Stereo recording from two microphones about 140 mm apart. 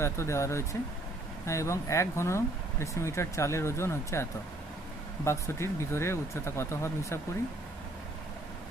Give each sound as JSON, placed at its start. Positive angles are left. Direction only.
{"t": 0.0, "sound": "speech", "side_deg": 20}